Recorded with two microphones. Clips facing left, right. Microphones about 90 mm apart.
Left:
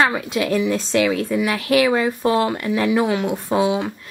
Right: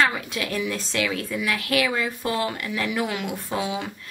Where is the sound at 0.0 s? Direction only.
25° left (ahead or behind).